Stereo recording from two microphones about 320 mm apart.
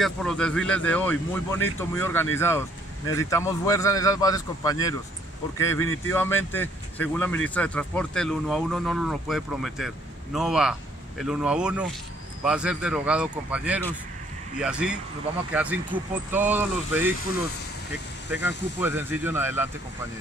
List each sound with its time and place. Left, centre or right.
0.0 s a man's voice: centre
6.0 s a man's voice: centre
18.3 s speech: centre